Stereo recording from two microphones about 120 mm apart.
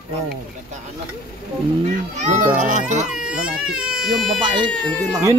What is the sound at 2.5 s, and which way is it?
Speech, 90° right.